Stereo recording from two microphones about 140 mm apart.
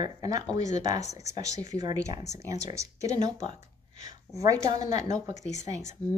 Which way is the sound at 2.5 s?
25° right (ahead or behind).